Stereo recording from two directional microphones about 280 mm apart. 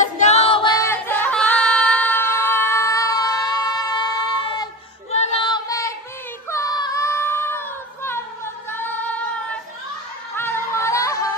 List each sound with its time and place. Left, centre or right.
0.0 s music: left
5.1 s a sound: left
6.5 s child singing: centre
8.6 s female singing: centre
10.3 s music: centre